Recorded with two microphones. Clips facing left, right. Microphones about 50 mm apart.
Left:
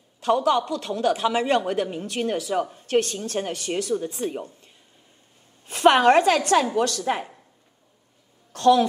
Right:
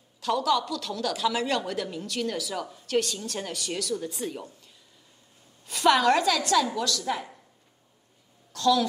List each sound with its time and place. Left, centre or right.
0.2 s a woman's voice: left
8.5 s a woman's voice: left